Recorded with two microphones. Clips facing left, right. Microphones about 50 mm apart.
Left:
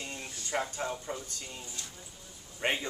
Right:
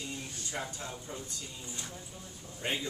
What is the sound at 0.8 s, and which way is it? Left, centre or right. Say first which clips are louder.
Speech: left 6 dB; left.